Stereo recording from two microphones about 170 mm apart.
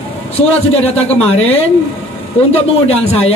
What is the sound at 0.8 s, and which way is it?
Speech, 35° left (ahead or behind).